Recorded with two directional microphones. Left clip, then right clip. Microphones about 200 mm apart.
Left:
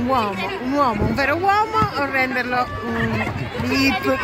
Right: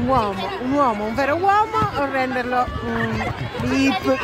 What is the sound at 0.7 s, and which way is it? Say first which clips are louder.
Speech: even; 35° right (ahead or behind).